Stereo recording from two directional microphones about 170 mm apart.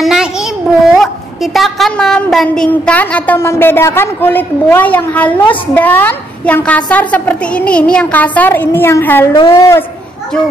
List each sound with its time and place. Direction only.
0.0 s a child's voice: 5° right (ahead or behind); by 9.8 s 15° left (ahead or behind)